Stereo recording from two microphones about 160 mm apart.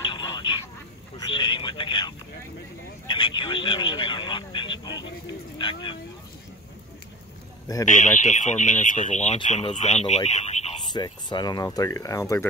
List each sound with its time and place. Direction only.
0.0 s a sound: 30° left (ahead or behind)
5.6 s speech: 30° left (ahead or behind)
7.8 s speech: 50° left (ahead or behind)
10.9 s speech: 25° left (ahead or behind)